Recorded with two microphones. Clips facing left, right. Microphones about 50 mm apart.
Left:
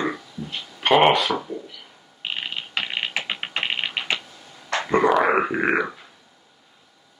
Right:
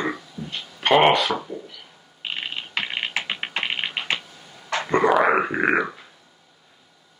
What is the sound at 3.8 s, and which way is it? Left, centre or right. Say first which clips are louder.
Typing: even; right.